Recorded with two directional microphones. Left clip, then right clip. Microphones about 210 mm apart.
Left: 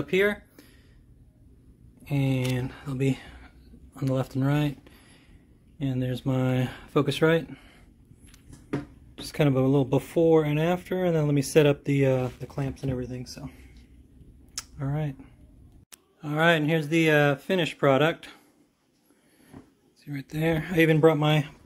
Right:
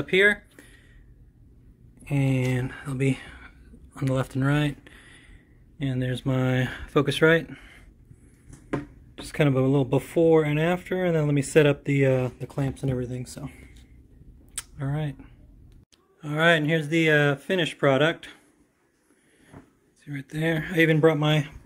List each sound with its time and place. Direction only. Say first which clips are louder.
0.0 s speech: right 4 dB; 5° left (ahead or behind)
2.0 s speech: right 2 dB; centre (ahead or behind)
9.1 s speech: right 1 dB; centre (ahead or behind)
12.5 s speech: right 3 dB; 20° right (ahead or behind)
14.5 s a sound: even; centre (ahead or behind)
16.2 s speech: right 2 dB; 5° left (ahead or behind)
20.1 s speech: even; 5° left (ahead or behind)